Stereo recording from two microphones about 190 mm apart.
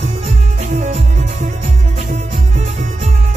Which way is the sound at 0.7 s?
40° right (ahead or behind).